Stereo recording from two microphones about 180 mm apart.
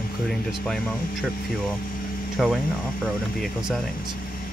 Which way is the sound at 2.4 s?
Centre (ahead or behind).